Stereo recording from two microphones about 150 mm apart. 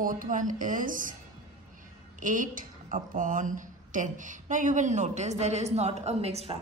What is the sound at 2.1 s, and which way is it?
A woman's voice, 60° right (ahead or behind).